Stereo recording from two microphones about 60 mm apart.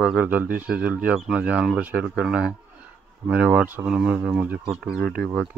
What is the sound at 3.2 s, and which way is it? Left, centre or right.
Speech, right.